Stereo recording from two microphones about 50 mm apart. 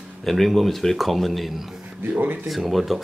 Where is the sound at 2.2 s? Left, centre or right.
Right.